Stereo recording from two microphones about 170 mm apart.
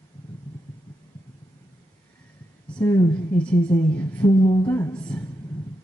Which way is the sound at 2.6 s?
10° left (ahead or behind).